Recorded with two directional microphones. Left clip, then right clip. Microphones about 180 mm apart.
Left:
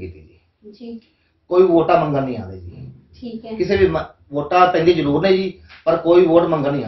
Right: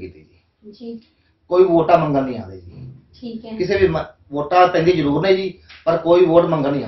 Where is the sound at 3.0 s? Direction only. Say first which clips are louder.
Right 1 dB; 10° right (ahead or behind).